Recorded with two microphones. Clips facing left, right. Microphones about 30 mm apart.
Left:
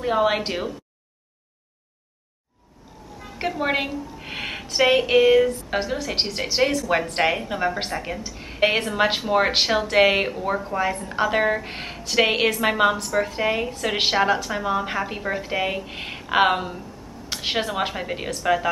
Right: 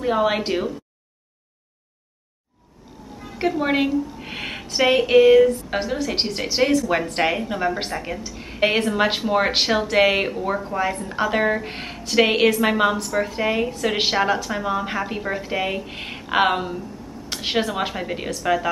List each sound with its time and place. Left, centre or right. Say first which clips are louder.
0.0 s a woman's voice: right 1 dB; centre
3.3 s a woman's voice: right 3 dB; centre